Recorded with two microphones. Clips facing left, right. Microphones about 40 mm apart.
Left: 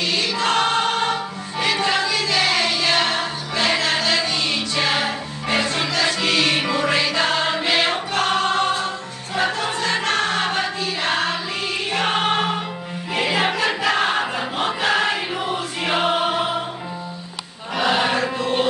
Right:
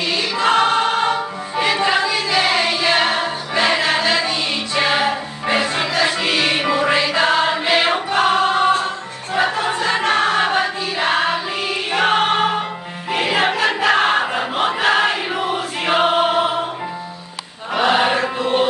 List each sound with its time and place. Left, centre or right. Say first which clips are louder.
0.0 s music: right 3 dB; centre
8.8 s choir: right 3 dB; centre
11.9 s music: right 4 dB; centre
17.7 s chant: right 3 dB; right